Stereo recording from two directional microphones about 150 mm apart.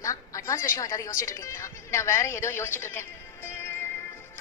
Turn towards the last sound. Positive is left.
turn(degrees=15)  # may be behind; listen again after turning